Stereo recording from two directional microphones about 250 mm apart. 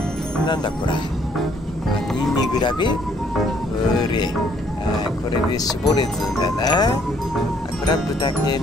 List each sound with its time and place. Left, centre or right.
2.6 s speech: centre
4.0 s speech: centre
5.5 s speech: centre